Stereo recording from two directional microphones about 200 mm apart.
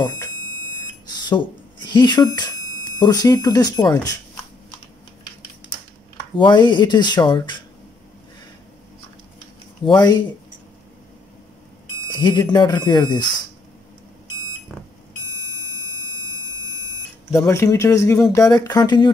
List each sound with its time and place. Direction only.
1.9 s speech: 20° left (ahead or behind)
6.3 s speech: 25° left (ahead or behind)
9.8 s speech: 20° left (ahead or behind)
12.1 s speech: 20° left (ahead or behind)
17.3 s speech: 15° left (ahead or behind)